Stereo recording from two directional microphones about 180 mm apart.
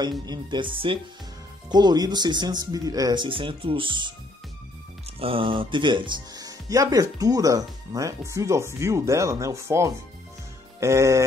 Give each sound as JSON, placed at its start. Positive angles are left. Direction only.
{"t": 0.3, "sound": "speech", "side_deg": -25}
{"t": 5.2, "sound": "speech", "side_deg": -30}
{"t": 10.8, "sound": "music", "side_deg": -15}